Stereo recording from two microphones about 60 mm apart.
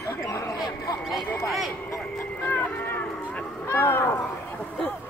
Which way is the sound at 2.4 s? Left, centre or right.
Left.